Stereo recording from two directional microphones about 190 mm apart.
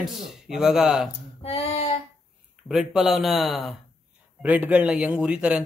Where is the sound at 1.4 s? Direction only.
30° left (ahead or behind).